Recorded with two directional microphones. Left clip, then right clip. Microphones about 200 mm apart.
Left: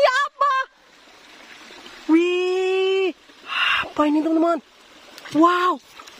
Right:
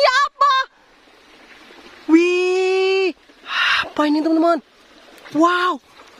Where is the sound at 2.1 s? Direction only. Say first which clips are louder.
Right 4 dB; 15° right (ahead or behind).